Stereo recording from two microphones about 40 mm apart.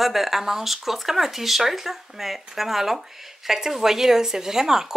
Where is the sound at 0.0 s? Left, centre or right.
Centre.